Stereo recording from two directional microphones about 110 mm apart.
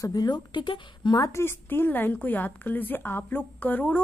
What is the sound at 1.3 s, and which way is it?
A woman's voice, 20° left (ahead or behind).